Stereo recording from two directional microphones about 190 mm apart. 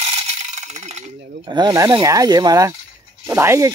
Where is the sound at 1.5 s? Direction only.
20° right (ahead or behind).